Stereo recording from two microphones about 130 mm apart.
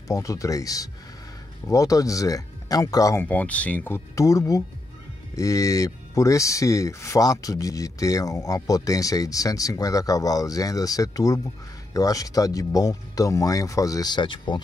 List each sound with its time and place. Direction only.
0.1 s speech: 25° left (ahead or behind)
3.3 s speech: 10° left (ahead or behind); by 14.6 s 40° left (ahead or behind)